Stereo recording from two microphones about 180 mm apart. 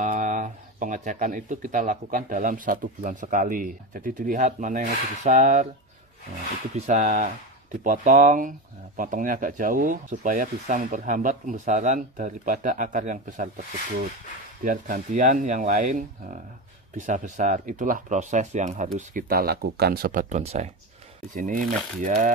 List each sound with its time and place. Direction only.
0.0 s speech: 45° right (ahead or behind)
6.9 s speech: 45° right (ahead or behind)
14.6 s speech: 45° right (ahead or behind)